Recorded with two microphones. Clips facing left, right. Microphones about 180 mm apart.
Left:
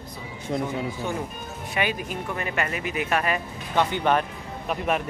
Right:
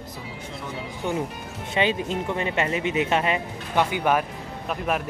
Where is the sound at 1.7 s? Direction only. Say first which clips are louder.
Right 4 dB; 25° right (ahead or behind).